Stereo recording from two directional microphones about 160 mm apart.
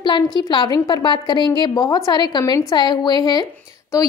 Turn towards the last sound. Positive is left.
turn(degrees=25)  # may be behind; listen again after turning